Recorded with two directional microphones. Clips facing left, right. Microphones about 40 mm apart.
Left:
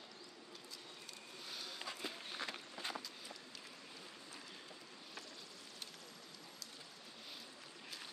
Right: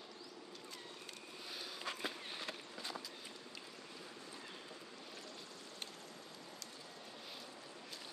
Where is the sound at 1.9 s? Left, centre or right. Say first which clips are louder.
Right 6 dB; right.